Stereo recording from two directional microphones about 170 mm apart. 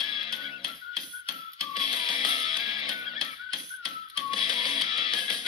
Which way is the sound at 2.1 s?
30° left (ahead or behind).